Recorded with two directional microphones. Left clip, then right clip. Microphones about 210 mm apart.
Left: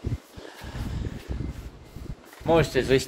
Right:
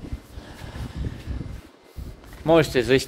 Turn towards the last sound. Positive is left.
turn(degrees=-40)  # may be behind; listen again after turning